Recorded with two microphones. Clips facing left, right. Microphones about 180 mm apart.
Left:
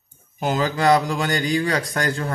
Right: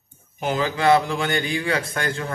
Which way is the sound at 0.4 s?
40° left (ahead or behind).